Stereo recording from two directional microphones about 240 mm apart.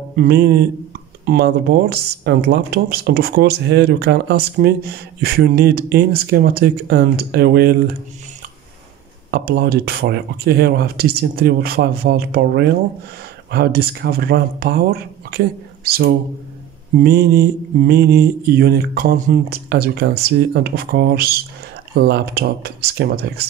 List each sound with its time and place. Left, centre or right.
0.1 s mantra: right
9.3 s mantra: right